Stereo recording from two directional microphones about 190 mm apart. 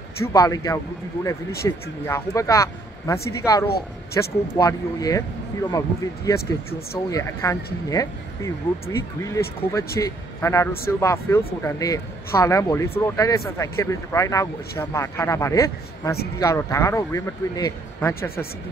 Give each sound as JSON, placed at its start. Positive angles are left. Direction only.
{"t": 0.2, "sound": "speech", "side_deg": 20}